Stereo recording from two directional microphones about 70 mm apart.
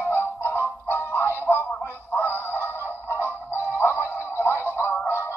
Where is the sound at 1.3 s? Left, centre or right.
Left.